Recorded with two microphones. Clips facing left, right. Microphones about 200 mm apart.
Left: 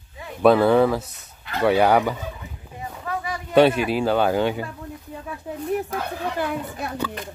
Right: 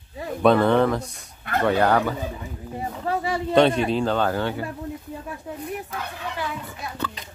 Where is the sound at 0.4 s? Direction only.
5° left (ahead or behind).